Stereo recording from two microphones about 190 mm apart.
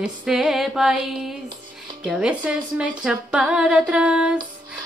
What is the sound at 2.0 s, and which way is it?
Music, 5° right (ahead or behind).